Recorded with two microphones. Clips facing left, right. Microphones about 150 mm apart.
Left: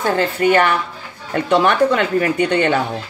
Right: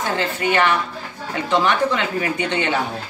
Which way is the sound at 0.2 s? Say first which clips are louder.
Left 4 dB; 50° left (ahead or behind).